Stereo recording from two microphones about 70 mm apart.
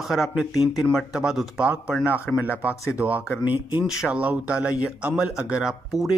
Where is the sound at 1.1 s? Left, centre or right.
Centre.